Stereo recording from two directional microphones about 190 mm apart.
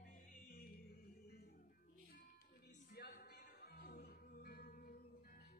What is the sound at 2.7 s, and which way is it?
Music, 55° left (ahead or behind).